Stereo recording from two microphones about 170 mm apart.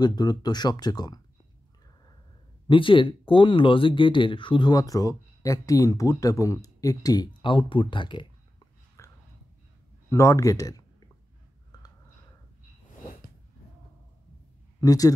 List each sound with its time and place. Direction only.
0.0 s speech: 25° left (ahead or behind)
2.7 s speech: 30° left (ahead or behind)
9.0 s a sound: 15° left (ahead or behind)
10.0 s speech: 15° left (ahead or behind)
14.8 s speech: 20° left (ahead or behind)